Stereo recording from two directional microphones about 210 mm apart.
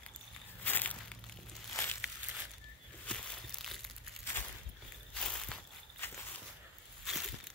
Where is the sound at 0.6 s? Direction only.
10° left (ahead or behind).